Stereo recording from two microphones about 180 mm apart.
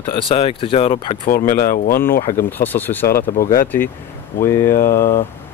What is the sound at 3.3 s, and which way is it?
Speech, 50° left (ahead or behind).